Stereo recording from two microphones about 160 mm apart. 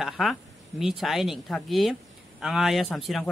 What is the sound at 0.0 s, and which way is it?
Speech, centre (ahead or behind).